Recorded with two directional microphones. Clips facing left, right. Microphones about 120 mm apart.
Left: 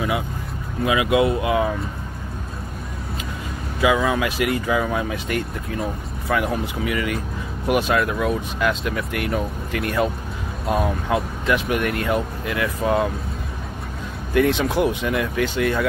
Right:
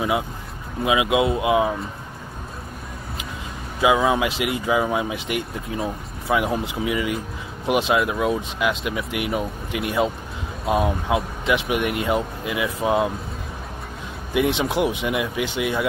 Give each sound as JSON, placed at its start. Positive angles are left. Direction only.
{"t": 0.8, "sound": "speech", "side_deg": -20}
{"t": 3.8, "sound": "speech", "side_deg": -20}
{"t": 10.6, "sound": "speech", "side_deg": 0}
{"t": 11.1, "sound": "speech", "side_deg": -10}
{"t": 14.3, "sound": "speech", "side_deg": -15}